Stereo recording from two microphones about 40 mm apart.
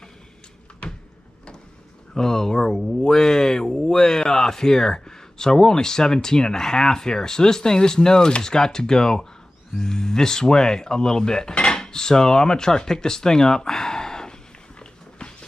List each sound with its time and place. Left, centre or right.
2.1 s speech: centre
11.5 s cutlery: centre
14.8 s a sound: left